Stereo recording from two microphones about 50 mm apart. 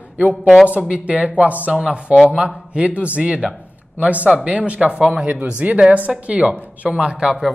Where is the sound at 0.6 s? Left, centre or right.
Right.